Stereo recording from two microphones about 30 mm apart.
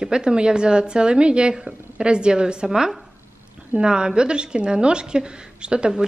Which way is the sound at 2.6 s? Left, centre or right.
Centre.